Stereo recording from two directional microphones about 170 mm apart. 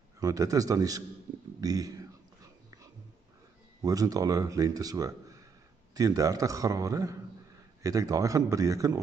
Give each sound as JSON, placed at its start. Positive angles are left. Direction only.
{"t": 0.2, "sound": "speech", "side_deg": -20}
{"t": 3.8, "sound": "speech", "side_deg": -20}